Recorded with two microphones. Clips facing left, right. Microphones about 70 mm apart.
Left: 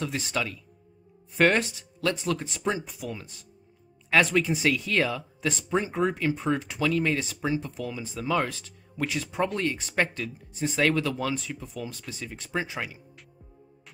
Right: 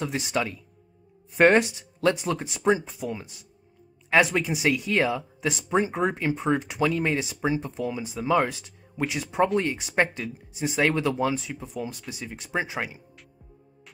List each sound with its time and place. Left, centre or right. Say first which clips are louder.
0.0 s speech: right 3 dB; right
2.4 s speech: right 6 dB; centre
2.8 s speech: right 4 dB; right